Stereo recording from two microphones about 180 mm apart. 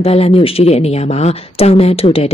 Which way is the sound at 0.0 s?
35° left (ahead or behind).